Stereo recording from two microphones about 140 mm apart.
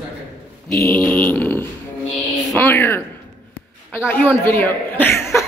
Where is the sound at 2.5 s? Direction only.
15° left (ahead or behind).